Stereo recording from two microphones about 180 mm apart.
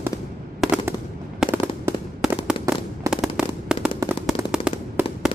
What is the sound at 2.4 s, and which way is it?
Fireworks, 10° right (ahead or behind).